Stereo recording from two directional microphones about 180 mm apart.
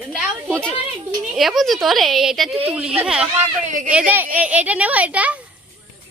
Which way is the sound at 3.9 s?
10° right (ahead or behind).